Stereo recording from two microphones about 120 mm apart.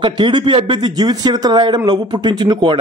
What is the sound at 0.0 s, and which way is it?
A man's voice, 40° right (ahead or behind).